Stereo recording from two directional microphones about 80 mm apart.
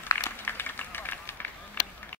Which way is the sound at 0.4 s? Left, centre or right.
Left.